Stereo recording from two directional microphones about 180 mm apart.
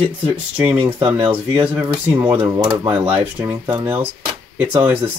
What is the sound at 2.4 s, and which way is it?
Speech, 20° right (ahead or behind).